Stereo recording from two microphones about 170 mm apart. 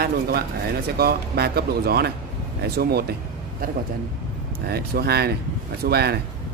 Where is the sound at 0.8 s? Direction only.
70° right (ahead or behind).